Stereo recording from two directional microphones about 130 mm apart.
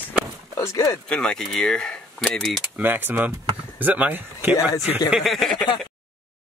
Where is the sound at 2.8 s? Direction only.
15° right (ahead or behind).